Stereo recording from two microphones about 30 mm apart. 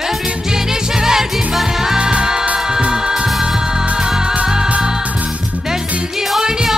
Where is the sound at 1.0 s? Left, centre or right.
Centre.